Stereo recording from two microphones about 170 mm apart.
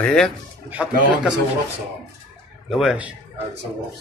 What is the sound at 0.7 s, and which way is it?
Speech, 10° right (ahead or behind).